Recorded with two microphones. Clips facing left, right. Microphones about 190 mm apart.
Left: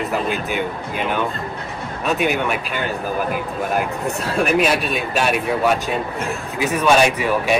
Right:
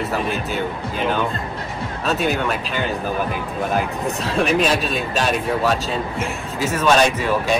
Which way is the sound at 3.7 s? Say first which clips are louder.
Left 1 dB; 5° left (ahead or behind).